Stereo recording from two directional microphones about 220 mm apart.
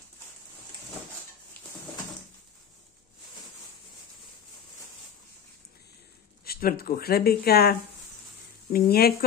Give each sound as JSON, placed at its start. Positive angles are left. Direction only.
{"t": 6.4, "sound": "speech", "side_deg": 45}
{"t": 8.7, "sound": "speech", "side_deg": 45}